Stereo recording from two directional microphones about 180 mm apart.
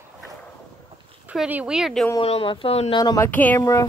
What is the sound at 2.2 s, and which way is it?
Speech, 30° left (ahead or behind).